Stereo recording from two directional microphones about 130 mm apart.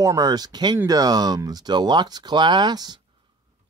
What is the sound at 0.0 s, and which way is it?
Speech, 25° right (ahead or behind).